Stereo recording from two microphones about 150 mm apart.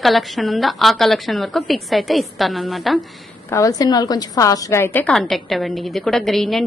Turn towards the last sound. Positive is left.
turn(degrees=0)  # may be behind; listen again after turning